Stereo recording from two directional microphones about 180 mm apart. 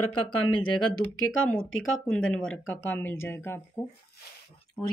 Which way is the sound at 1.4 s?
5° left (ahead or behind).